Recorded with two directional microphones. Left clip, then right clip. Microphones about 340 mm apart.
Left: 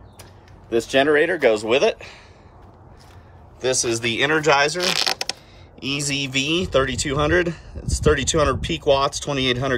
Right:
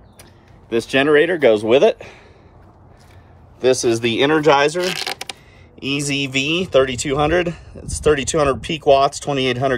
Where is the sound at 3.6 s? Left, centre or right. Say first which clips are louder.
Right 5 dB; centre.